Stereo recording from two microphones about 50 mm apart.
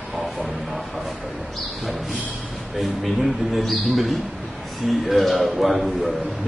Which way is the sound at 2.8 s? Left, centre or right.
Centre.